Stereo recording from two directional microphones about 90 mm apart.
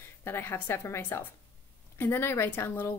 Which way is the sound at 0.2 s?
25° left (ahead or behind).